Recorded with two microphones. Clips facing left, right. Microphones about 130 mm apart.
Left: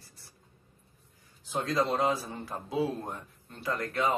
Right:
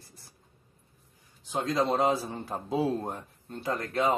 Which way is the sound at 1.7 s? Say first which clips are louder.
Right 2 dB; 20° right (ahead or behind).